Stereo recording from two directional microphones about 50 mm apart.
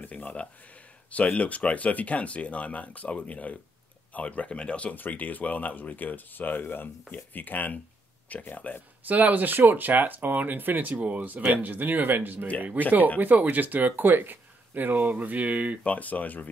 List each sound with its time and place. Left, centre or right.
0.0 s a sound: left
1.1 s speech: left
4.9 s speech: left
9.0 s speech: right
15.8 s speech: left